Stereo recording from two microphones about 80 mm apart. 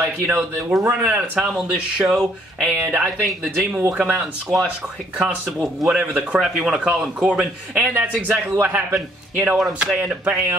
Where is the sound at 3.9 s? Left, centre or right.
Centre.